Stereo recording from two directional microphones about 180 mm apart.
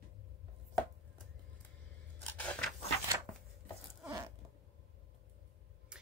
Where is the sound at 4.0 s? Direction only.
15° right (ahead or behind).